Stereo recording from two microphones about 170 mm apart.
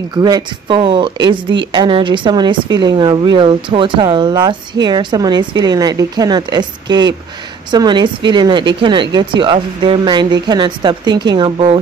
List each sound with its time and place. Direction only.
0.1 s a woman's voice: 25° right (ahead or behind)